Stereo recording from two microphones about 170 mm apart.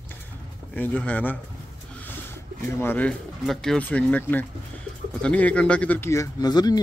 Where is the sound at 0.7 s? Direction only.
10° left (ahead or behind).